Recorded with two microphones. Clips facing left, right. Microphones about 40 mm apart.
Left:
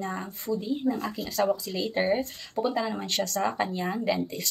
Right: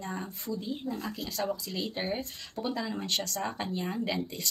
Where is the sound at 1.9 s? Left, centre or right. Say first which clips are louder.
Left 8 dB; centre.